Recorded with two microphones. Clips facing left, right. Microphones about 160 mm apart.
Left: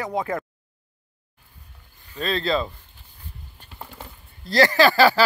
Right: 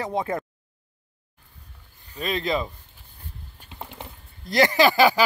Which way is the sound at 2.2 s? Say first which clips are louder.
Left 2 dB; 15° right (ahead or behind).